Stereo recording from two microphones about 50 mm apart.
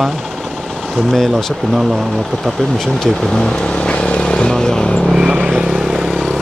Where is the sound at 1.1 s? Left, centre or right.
Centre.